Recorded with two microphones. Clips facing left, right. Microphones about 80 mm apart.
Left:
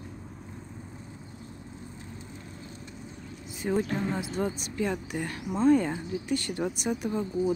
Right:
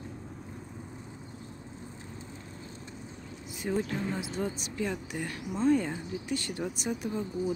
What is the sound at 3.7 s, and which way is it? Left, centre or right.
Speech, left.